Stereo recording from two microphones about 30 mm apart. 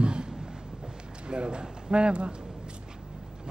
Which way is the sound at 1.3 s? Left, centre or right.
Right.